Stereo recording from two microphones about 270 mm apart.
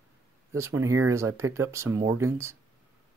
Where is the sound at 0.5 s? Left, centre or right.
Centre.